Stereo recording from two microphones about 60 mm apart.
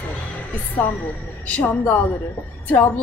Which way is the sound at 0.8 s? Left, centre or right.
Left.